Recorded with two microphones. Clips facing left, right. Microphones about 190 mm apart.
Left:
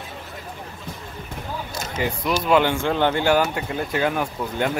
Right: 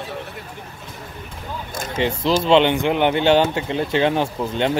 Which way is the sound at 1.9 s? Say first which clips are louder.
Right 4 dB; 25° right (ahead or behind).